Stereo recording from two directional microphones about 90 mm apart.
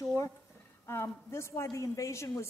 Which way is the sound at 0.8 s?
30° left (ahead or behind).